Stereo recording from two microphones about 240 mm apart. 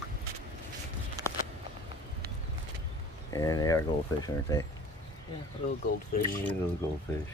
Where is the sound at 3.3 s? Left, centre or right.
Centre.